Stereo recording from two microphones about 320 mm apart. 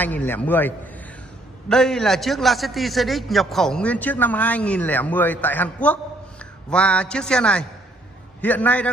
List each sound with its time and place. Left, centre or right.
0.0 s a man's voice: centre